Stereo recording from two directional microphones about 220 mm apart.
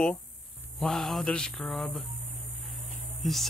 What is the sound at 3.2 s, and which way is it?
Mantra, centre (ahead or behind).